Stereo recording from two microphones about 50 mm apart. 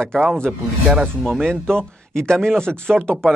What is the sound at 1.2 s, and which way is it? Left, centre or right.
Speech, centre.